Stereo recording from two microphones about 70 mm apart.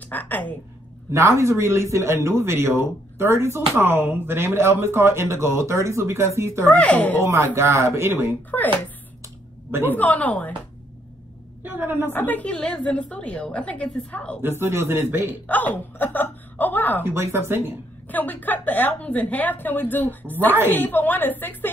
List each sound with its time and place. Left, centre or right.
0.1 s a woman's voice: left
1.1 s speech: right
6.7 s a woman's voice: centre
7.2 s speech: right
8.5 s a woman's voice: left
9.7 s a woman's voice: right
9.9 s a woman's voice: left
11.6 s speech: right
12.1 s a woman's voice: left
12.4 s a woman's voice: centre
14.6 s speech: right
15.4 s a woman's voice: left
17.0 s speech: right
18.0 s a woman's voice: left